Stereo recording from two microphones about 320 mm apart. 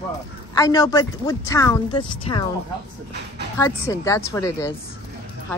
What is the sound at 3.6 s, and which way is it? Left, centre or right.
A woman's voice, centre.